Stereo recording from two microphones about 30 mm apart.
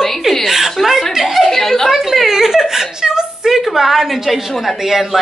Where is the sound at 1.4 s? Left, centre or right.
Centre.